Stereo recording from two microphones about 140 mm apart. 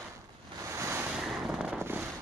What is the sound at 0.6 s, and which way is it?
Waves, 20° right (ahead or behind).